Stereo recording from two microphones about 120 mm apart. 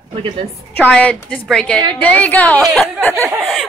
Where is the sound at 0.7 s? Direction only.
10° left (ahead or behind).